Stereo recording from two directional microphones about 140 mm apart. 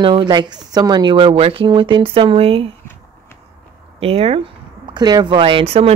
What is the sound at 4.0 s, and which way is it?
Speech, 45° right (ahead or behind).